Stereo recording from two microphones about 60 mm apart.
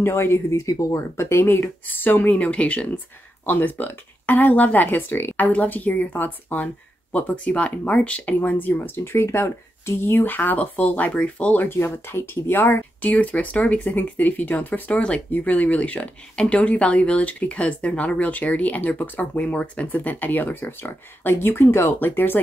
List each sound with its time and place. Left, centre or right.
0.0 s speech: left
2.3 s speech: left
11.8 s speech: left
13.0 s speech: left